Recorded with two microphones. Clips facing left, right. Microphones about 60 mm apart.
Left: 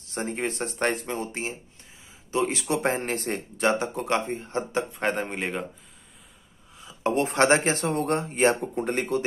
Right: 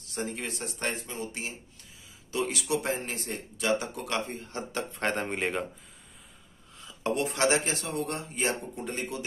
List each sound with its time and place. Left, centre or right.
0.1 s speech: left
0.9 s speech: left
1.2 s speech: left
2.8 s speech: left
4.9 s speech: centre
7.0 s a sound: left
7.2 s speech: left